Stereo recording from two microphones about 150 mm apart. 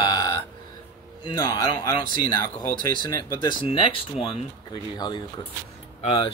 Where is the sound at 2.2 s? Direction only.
15° left (ahead or behind).